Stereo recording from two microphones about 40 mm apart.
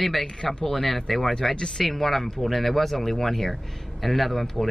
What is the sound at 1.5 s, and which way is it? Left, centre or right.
Speech, centre.